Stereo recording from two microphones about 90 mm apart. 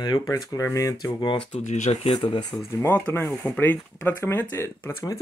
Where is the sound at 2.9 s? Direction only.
20° left (ahead or behind).